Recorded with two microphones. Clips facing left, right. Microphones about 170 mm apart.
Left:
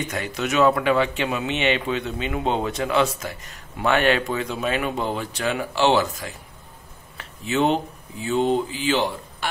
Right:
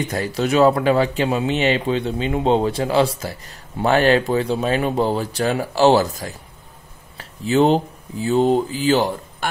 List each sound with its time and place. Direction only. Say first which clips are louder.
0.0 s speech: right 5 dB; 35° right (ahead or behind)